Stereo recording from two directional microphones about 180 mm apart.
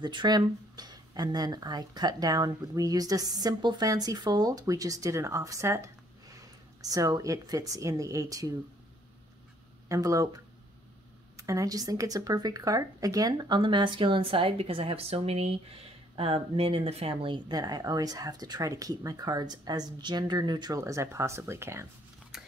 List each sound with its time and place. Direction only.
0.0 s speech: 25° right (ahead or behind)
9.8 s speech: 20° right (ahead or behind)